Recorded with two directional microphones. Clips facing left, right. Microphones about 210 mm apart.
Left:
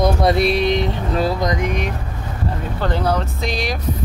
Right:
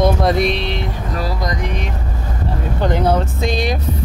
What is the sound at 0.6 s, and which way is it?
Vehicle, 15° left (ahead or behind).